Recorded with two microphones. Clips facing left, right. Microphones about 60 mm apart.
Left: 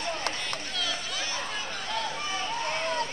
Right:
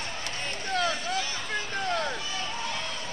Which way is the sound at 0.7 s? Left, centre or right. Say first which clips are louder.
Right 11 dB; right.